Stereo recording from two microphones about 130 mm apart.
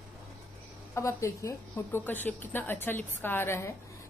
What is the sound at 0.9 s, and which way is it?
Speech, 25° left (ahead or behind).